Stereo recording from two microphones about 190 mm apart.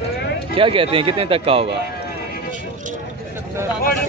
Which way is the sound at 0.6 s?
30° right (ahead or behind).